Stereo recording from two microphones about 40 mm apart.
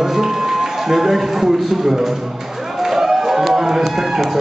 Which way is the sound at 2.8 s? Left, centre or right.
Centre.